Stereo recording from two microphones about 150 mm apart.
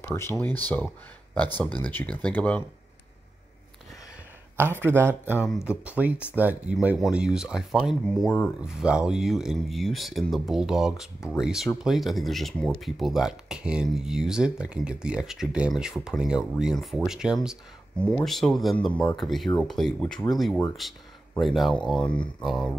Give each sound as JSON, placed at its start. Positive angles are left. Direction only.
{"t": 0.0, "sound": "speech", "side_deg": 15}
{"t": 1.6, "sound": "speech", "side_deg": 10}
{"t": 4.6, "sound": "speech", "side_deg": -15}
{"t": 8.5, "sound": "speech", "side_deg": -5}
{"t": 17.9, "sound": "speech", "side_deg": 5}